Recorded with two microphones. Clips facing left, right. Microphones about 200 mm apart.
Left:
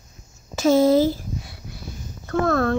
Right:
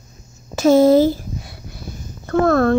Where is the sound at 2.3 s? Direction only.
45° right (ahead or behind).